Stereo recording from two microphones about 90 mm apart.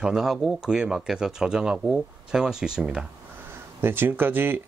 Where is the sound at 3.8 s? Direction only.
25° right (ahead or behind).